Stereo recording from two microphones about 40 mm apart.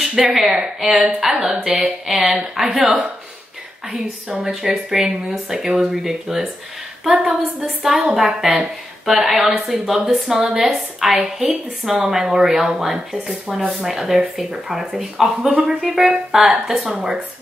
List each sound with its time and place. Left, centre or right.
0.1 s a woman's voice: centre
1.7 s mantra: right
2.0 s a woman's voice: centre
4.3 s a woman's voice: centre
8.1 s a woman's voice: centre